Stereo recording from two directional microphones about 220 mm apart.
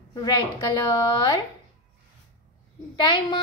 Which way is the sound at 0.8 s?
15° left (ahead or behind).